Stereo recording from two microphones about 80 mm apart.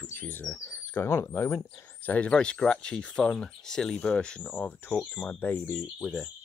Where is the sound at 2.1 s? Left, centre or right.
Centre.